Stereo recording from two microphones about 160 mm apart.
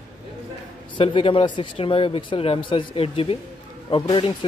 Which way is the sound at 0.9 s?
35° left (ahead or behind).